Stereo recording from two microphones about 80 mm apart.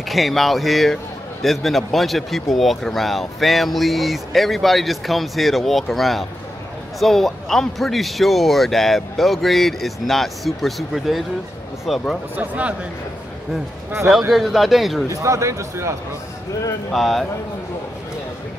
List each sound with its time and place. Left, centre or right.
0.1 s speech: centre
12.4 s speech: centre
14.3 s speech: centre
15.0 s speech: right
16.9 s speech: centre